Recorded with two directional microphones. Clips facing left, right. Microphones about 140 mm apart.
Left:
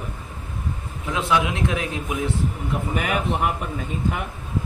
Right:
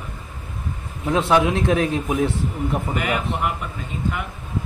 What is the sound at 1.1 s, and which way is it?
A man's voice, 40° right (ahead or behind).